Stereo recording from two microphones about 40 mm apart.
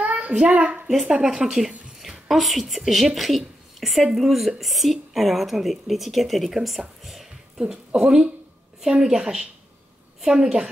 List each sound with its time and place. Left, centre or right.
0.0 s child singing: right
0.5 s a child's voice: right
1.1 s a woman's voice: centre
7.5 s speech: right
10.3 s speech: centre